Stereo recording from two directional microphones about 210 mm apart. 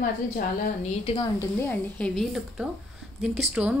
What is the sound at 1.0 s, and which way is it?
Speech, 25° left (ahead or behind).